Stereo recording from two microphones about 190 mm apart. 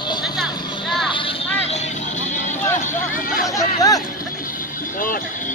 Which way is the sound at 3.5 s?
20° left (ahead or behind).